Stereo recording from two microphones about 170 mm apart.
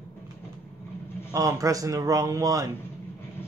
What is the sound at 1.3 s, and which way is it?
A man's voice, 20° right (ahead or behind).